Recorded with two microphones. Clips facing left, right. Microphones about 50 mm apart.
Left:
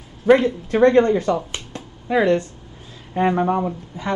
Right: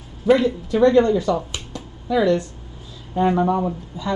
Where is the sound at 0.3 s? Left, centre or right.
Left.